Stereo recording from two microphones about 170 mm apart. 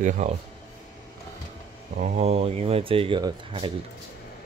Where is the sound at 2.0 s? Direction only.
40° right (ahead or behind).